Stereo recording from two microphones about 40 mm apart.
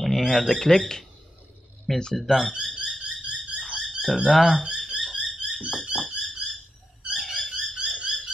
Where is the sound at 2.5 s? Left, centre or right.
Right.